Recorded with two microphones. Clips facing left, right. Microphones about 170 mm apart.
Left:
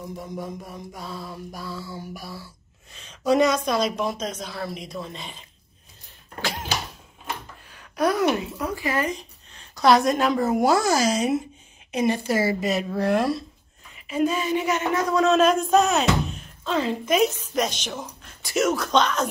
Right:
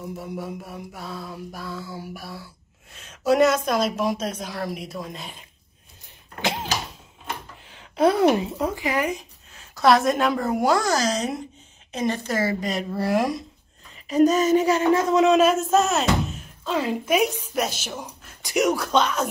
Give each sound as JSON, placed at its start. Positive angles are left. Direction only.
{"t": 0.0, "sound": "a woman's voice", "side_deg": -5}
{"t": 7.6, "sound": "a woman's voice", "side_deg": -20}
{"t": 13.0, "sound": "speech", "side_deg": -10}
{"t": 13.9, "sound": "speech", "side_deg": -40}
{"t": 14.9, "sound": "a man's voice", "side_deg": -25}
{"t": 15.3, "sound": "speech", "side_deg": -5}